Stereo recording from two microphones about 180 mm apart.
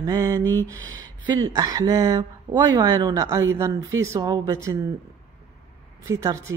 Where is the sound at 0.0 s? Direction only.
20° right (ahead or behind).